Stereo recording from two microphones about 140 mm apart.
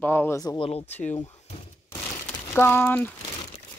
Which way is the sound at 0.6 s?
45° left (ahead or behind).